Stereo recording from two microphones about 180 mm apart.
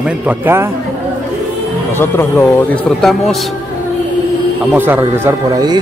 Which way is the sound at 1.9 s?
15° left (ahead or behind).